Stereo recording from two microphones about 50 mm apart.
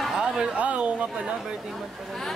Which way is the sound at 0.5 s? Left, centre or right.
Right.